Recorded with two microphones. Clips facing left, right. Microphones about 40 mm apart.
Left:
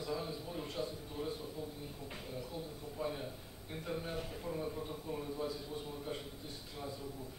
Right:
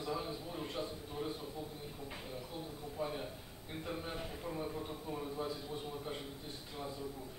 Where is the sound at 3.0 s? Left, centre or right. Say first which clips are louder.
Left 1 dB; centre.